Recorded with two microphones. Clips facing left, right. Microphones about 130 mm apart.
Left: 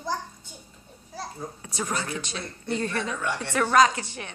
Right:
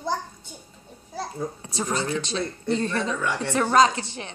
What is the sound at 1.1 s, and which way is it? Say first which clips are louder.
A child's voice: right 5 dB; 30° right (ahead or behind).